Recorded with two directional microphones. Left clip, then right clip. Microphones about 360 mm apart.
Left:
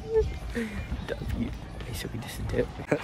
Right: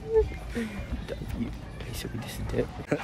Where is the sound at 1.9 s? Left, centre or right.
Centre.